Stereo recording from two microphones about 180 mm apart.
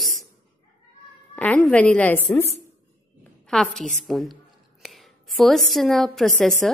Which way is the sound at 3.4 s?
5° left (ahead or behind).